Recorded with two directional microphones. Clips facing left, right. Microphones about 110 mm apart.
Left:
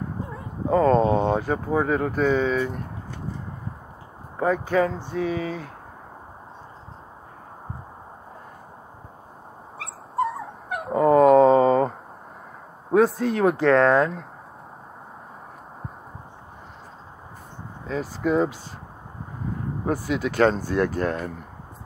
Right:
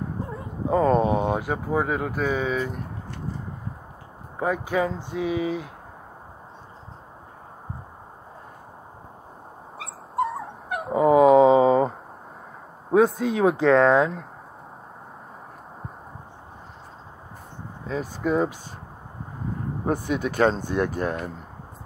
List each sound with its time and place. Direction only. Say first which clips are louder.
0.7 s speech: left 2 dB; 15° right (ahead or behind)
4.4 s speech: left 3 dB; 10° right (ahead or behind)
9.8 s dog: even; centre (ahead or behind)
12.9 s speech: even; 5° right (ahead or behind)
17.8 s speech: left 1 dB; 10° right (ahead or behind)
19.9 s speech: even; 15° right (ahead or behind)